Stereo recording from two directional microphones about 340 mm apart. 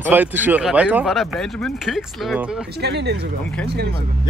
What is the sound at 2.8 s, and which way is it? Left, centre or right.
Speech, right.